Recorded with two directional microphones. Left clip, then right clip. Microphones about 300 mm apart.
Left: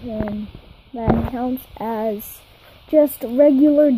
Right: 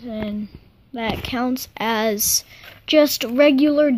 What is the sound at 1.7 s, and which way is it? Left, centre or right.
Speech, centre.